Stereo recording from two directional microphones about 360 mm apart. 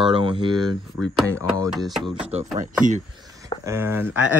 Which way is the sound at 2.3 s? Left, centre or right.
Centre.